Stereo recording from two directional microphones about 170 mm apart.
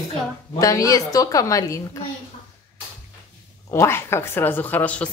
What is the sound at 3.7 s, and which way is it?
A woman's voice, 15° left (ahead or behind).